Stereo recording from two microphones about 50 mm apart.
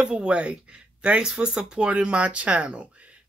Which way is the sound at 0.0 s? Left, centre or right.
Centre.